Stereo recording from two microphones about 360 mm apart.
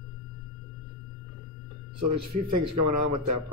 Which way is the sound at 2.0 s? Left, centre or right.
Right.